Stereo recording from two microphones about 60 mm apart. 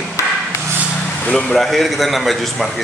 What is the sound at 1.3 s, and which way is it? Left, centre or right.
Speech, centre.